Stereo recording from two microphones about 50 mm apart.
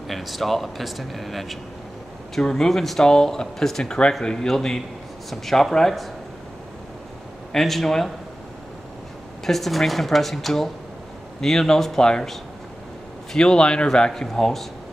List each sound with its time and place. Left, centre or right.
0.1 s speech: centre
7.5 s speech: centre
9.5 s speech: centre